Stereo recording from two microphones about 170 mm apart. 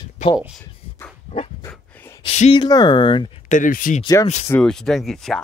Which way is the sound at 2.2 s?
35° left (ahead or behind).